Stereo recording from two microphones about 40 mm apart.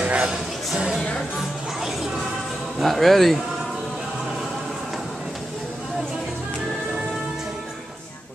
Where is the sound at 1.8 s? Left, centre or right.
Centre.